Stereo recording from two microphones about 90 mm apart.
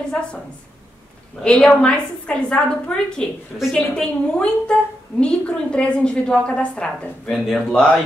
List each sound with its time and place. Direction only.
1.4 s a woman's voice: 10° left (ahead or behind)
7.7 s a woman's voice: 15° left (ahead or behind)